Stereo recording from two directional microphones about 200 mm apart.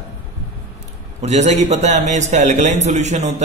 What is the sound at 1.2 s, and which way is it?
Speech, 35° right (ahead or behind).